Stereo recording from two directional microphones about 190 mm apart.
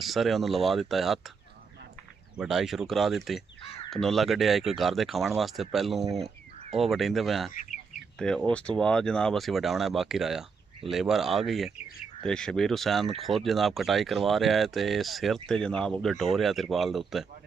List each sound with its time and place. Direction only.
0.0 s speech: centre (ahead or behind)
2.3 s speech: centre (ahead or behind)
3.6 s crow: 30° left (ahead or behind)
3.9 s speech: centre (ahead or behind)